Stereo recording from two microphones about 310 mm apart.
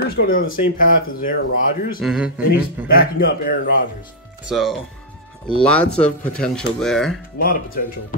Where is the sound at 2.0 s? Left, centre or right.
Centre.